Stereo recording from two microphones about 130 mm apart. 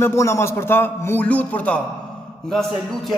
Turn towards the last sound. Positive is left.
turn(degrees=0)  # may be behind; listen again after turning